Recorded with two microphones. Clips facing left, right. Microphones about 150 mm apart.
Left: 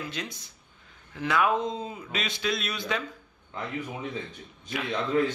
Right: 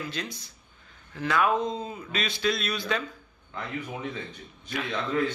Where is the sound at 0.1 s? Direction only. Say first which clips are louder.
Right 1 dB; 20° left (ahead or behind).